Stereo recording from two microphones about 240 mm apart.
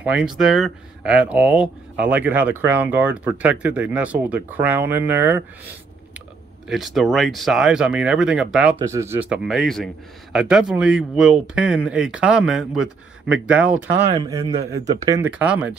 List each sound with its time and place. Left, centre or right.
0.0 s speech: centre
6.7 s speech: centre
14.0 s a man's voice: right
14.3 s speech: centre